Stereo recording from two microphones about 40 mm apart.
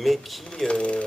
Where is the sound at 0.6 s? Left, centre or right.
Left.